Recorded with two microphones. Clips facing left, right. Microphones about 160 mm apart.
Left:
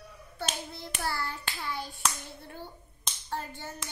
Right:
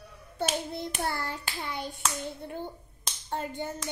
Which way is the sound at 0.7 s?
20° right (ahead or behind).